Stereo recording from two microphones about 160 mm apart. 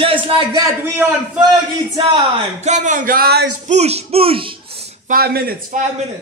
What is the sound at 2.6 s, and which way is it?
Speech, 50° right (ahead or behind).